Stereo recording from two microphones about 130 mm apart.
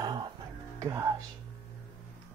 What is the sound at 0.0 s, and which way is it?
Music, 35° right (ahead or behind).